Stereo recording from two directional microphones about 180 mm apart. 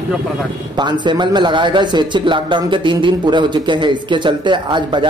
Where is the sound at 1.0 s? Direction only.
25° right (ahead or behind).